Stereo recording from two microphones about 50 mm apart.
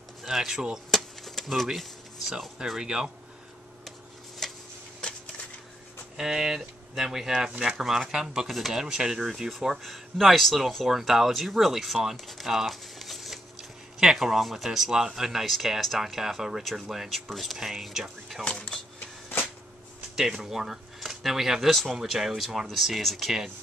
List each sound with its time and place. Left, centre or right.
0.2 s speech: centre
0.9 s a sound: centre
2.6 s speech: centre
4.4 s tick-tock: centre
6.1 s speech: centre
8.5 s speech: centre
8.7 s speech: centre
18.4 s speech: centre
18.9 s shuffling cards: left
20.2 s speech: centre